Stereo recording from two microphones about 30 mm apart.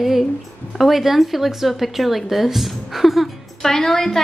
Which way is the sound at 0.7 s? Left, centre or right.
Centre.